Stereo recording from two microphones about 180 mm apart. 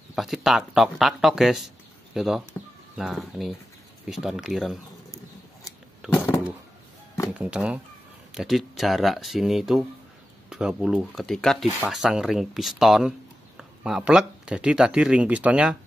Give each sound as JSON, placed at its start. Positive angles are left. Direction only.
{"t": 0.1, "sound": "speech", "side_deg": 0}
{"t": 5.6, "sound": "a sound", "side_deg": 20}
{"t": 7.3, "sound": "speech", "side_deg": -5}